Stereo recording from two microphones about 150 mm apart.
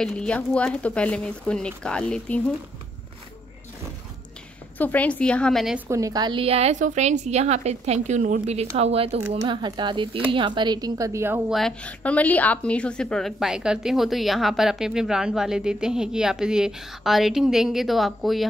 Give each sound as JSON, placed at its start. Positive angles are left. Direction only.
{"t": 0.0, "sound": "speech", "side_deg": 5}
{"t": 4.7, "sound": "speech", "side_deg": 10}
{"t": 5.9, "sound": "a woman's voice", "side_deg": -20}
{"t": 9.4, "sound": "speech", "side_deg": -30}
{"t": 11.5, "sound": "a woman's voice", "side_deg": 5}